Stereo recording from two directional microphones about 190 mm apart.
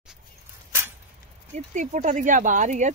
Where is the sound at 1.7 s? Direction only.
40° right (ahead or behind).